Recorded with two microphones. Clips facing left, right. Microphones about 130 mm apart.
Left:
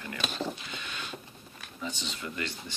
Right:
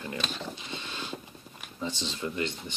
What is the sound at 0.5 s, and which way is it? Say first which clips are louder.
Printer: right 2 dB; 25° right (ahead or behind).